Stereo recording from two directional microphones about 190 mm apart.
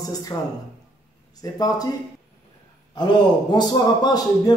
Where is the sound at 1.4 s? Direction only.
20° left (ahead or behind).